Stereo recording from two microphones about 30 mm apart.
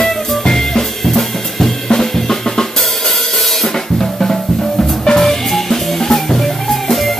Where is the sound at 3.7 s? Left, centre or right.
Centre.